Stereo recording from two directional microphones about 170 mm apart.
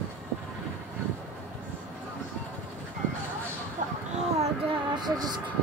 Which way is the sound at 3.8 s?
50° right (ahead or behind).